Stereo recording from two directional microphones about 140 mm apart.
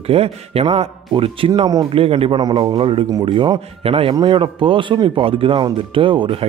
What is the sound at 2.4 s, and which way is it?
Speech, 25° right (ahead or behind).